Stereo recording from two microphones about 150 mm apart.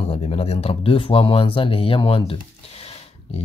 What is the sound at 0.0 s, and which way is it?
Speech, 40° left (ahead or behind).